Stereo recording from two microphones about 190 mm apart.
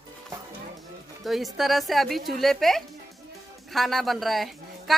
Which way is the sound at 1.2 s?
Centre (ahead or behind).